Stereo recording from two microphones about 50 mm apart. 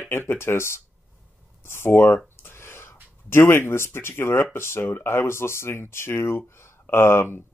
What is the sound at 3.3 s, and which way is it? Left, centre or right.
Speech, left.